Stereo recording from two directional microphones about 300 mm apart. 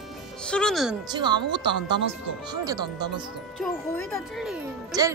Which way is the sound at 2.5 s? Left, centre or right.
Centre.